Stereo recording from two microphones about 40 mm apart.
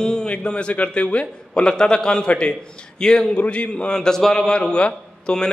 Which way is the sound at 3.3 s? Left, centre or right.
Left.